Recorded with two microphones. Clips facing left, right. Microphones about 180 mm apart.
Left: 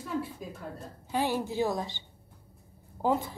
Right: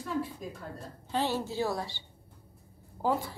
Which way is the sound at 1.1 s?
15° left (ahead or behind).